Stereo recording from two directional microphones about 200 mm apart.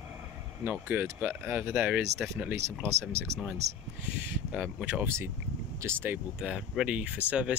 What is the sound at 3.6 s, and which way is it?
Speech, 35° right (ahead or behind).